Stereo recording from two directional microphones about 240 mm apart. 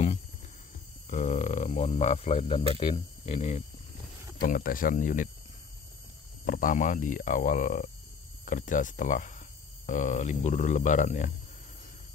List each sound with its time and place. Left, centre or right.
1.1 s speech: left
4.4 s speech: left
6.4 s speech: left